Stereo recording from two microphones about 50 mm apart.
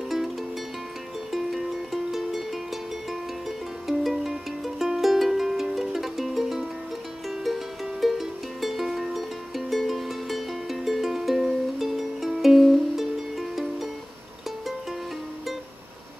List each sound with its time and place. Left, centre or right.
1.3 s music: centre